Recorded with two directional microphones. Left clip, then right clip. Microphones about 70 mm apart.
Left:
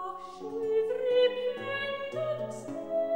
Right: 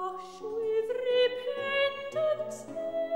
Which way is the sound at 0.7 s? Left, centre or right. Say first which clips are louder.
Left 2 dB; right.